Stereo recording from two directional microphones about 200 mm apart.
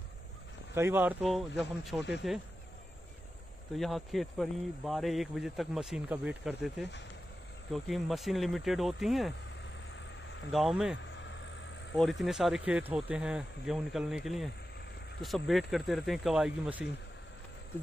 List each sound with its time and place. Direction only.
0.7 s speech: 10° right (ahead or behind)
3.7 s speech: centre (ahead or behind)
9.9 s vehicle: 65° left (ahead or behind)
10.5 s speech: centre (ahead or behind)